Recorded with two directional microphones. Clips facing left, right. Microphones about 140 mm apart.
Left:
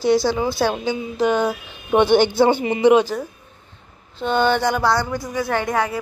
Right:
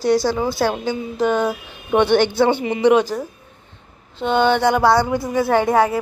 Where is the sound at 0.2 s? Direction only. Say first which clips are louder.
Even; centre (ahead or behind).